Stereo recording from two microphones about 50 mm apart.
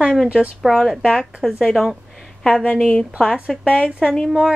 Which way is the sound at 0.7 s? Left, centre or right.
Centre.